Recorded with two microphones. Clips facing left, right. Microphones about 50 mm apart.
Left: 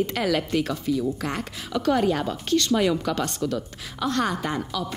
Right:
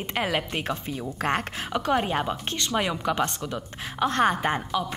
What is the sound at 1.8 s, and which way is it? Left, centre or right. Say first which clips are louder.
A woman's voice: left 3 dB; right.